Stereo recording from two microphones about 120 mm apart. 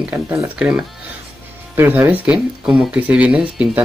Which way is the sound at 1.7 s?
20° right (ahead or behind).